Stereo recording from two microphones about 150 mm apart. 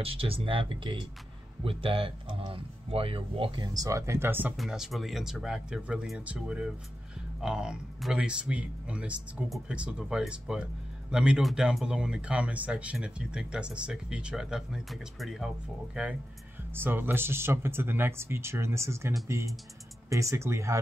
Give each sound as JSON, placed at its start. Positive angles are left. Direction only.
{"t": 0.0, "sound": "speech", "side_deg": -40}
{"t": 4.6, "sound": "speech", "side_deg": 0}